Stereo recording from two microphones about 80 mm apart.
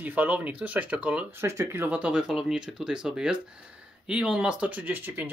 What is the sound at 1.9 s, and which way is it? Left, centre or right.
Speech, centre.